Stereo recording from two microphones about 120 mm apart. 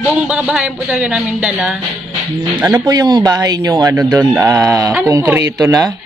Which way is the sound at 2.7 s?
35° right (ahead or behind).